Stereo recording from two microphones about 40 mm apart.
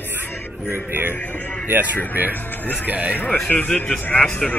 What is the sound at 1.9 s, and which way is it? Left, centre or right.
A man's voice, right.